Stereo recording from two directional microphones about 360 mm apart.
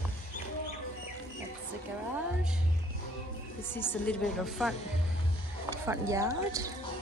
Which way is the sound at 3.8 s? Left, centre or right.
Centre.